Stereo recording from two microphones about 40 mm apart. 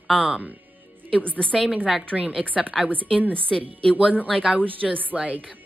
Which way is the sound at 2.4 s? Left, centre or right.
Right.